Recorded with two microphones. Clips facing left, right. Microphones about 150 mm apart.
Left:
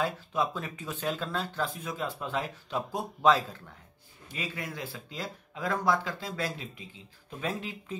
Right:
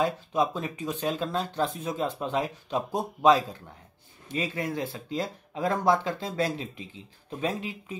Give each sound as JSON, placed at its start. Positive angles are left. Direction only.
{"t": 0.0, "sound": "speech", "side_deg": -20}
{"t": 4.3, "sound": "speech", "side_deg": -25}